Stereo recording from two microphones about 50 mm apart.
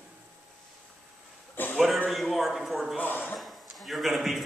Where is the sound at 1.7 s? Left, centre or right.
Centre.